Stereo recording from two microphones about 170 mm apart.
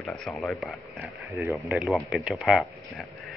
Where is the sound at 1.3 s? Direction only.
20° right (ahead or behind).